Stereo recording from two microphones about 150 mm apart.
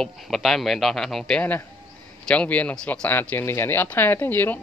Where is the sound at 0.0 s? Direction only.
Centre (ahead or behind).